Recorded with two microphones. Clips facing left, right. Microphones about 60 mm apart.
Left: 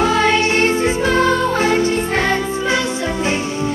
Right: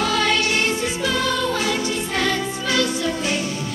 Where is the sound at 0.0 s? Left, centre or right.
Left.